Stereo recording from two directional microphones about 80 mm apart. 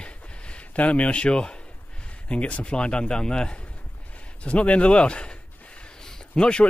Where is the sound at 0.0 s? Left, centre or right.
Centre.